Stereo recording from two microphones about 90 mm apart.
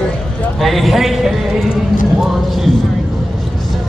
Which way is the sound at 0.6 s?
Centre (ahead or behind).